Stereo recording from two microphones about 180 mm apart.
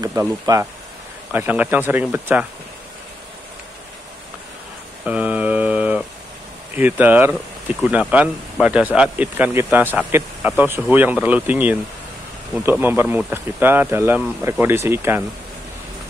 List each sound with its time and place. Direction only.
0.0 s speech: 15° right (ahead or behind)
5.0 s mantra: 5° right (ahead or behind)
6.8 s speech: 10° right (ahead or behind)